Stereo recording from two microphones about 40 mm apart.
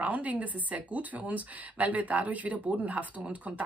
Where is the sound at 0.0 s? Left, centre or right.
Right.